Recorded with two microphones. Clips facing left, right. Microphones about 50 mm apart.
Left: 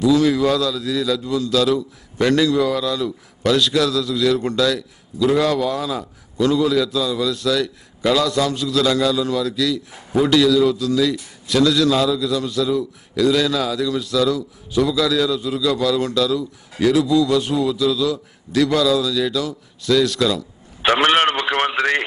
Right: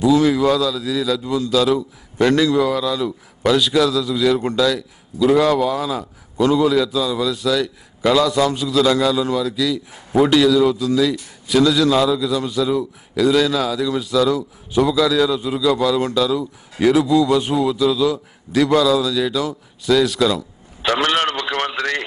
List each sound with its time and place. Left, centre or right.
0.0 s a man's voice: centre
1.2 s a man's voice: centre
6.3 s a man's voice: centre
14.7 s a man's voice: right
15.0 s a man's voice: centre
20.8 s radio: left